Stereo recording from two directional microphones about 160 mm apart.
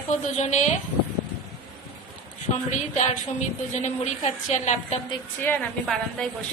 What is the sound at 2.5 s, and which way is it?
Speech, 45° left (ahead or behind).